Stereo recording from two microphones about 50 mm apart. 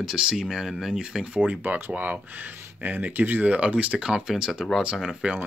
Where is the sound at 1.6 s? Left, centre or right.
Right.